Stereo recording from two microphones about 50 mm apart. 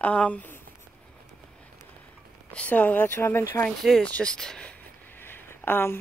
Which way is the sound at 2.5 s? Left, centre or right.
Left.